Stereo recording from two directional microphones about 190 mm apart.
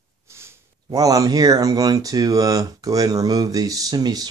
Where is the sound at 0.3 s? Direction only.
15° right (ahead or behind).